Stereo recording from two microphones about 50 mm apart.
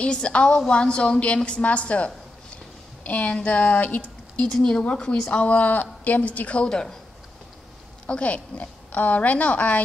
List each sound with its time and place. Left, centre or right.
0.0 s a woman's voice: left
3.3 s a sound: left
4.5 s a woman's voice: centre; by 6.6 s left
6.6 s speech: centre
8.1 s a woman's voice: left